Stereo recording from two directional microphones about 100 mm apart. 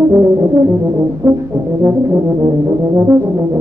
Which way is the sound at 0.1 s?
30° right (ahead or behind).